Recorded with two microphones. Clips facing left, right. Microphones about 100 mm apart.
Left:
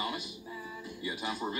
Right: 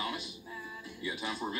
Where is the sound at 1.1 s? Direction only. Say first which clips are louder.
Left 1 dB; 5° left (ahead or behind).